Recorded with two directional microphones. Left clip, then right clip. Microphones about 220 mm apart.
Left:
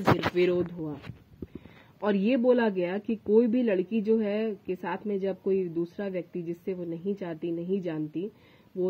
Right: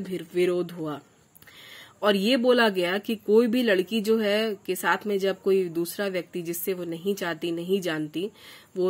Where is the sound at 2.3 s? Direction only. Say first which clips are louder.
Right 1 dB; 5° right (ahead or behind).